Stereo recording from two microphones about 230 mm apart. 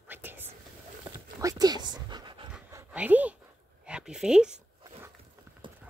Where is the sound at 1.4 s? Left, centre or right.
Centre.